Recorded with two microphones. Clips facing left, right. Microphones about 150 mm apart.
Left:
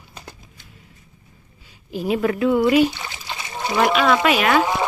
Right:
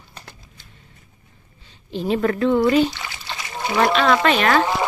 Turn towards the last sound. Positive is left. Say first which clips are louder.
# even
turn(degrees=10)  # may be behind; listen again after turning